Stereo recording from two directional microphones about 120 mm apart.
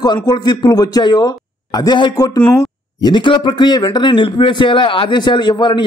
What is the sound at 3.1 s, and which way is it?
A man's voice, 40° left (ahead or behind).